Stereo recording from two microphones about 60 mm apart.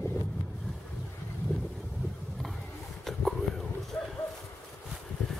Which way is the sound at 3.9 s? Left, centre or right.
Left.